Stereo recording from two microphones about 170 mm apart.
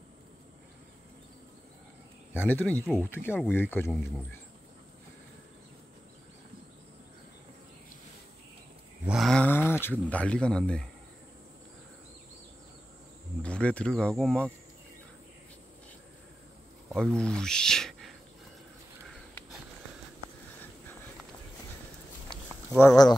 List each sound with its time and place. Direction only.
2.3 s speech: 10° left (ahead or behind)
9.0 s a sound: centre (ahead or behind)
9.7 s speech: 10° left (ahead or behind)
13.4 s speech: 5° left (ahead or behind)
16.9 s speech: 5° left (ahead or behind)
22.8 s speech: 20° left (ahead or behind)